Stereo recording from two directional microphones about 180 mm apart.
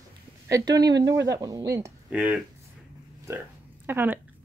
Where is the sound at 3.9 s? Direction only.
10° right (ahead or behind).